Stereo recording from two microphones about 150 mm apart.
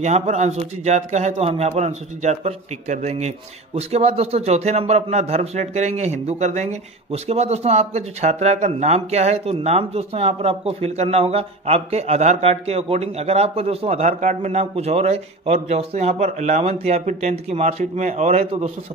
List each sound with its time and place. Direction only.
0.0 s speech: 50° right (ahead or behind)